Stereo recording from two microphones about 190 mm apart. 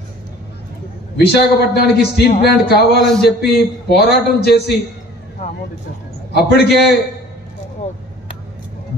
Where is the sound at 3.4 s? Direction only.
60° left (ahead or behind).